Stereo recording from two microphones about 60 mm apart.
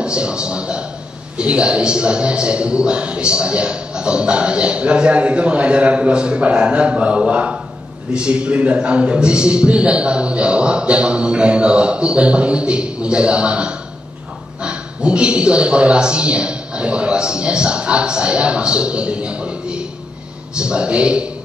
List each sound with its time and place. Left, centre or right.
0.0 s a man's voice: centre